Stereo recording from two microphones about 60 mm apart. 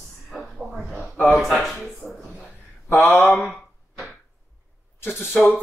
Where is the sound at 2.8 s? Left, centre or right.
Left.